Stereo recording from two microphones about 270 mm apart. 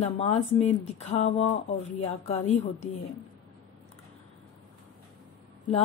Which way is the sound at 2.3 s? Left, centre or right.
Left.